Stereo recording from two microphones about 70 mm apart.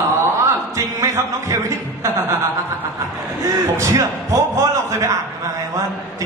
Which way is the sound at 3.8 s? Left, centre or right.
Right.